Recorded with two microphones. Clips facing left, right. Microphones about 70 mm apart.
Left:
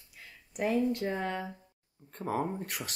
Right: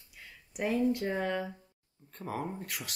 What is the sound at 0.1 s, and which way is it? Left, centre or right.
Speech, centre.